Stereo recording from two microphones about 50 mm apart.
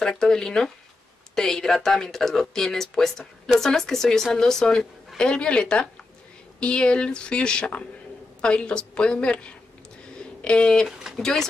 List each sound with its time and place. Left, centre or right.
0.1 s a woman's voice: centre
10.1 s a sound: centre
11.1 s speech: centre